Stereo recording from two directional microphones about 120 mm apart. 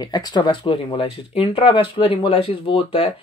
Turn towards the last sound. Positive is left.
turn(degrees=50)  # may be behind; listen again after turning